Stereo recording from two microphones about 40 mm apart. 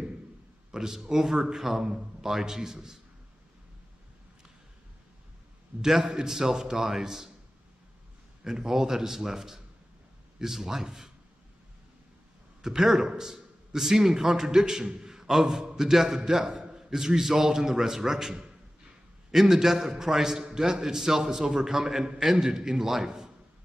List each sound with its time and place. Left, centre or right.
0.7 s a man's voice: centre
5.8 s a man's voice: centre
8.5 s a man's voice: centre
12.6 s a man's voice: centre
16.4 s a sound: centre
16.9 s a man's voice: centre